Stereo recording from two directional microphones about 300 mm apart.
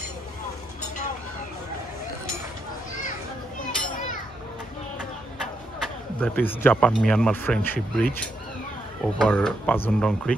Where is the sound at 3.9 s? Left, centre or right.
Left.